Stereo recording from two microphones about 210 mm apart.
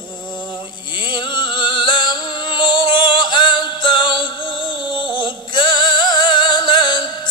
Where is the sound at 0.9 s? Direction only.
20° left (ahead or behind).